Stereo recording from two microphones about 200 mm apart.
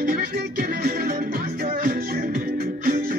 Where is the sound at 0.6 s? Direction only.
50° right (ahead or behind).